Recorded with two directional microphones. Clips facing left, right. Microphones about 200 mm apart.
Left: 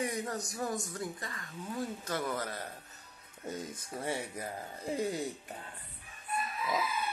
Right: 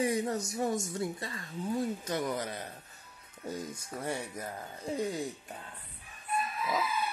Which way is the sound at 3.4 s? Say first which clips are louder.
Right 2 dB; centre (ahead or behind).